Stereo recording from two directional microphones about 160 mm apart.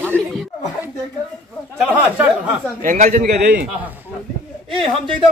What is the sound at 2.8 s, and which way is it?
Speech, 55° right (ahead or behind).